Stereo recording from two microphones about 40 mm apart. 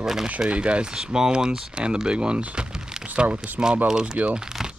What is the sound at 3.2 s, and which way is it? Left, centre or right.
Speech, right.